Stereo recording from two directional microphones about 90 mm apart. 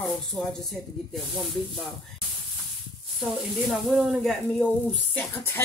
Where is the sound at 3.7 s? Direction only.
Centre (ahead or behind).